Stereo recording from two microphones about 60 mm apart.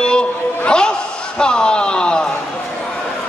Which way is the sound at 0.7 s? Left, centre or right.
Centre.